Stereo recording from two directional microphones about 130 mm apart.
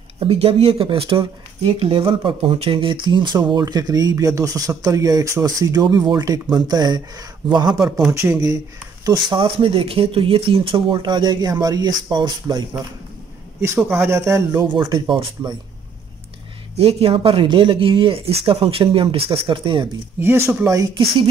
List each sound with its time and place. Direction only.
0.2 s speech: 50° right (ahead or behind); by 8.5 s 25° right (ahead or behind)
9.0 s speech: 35° right (ahead or behind)
13.6 s speech: 15° right (ahead or behind)
14.6 s speech: 35° right (ahead or behind)
16.7 s speech: 50° right (ahead or behind)
20.2 s speech: 20° right (ahead or behind)